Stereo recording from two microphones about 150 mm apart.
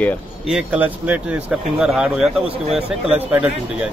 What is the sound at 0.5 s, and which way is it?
Speech, 5° right (ahead or behind).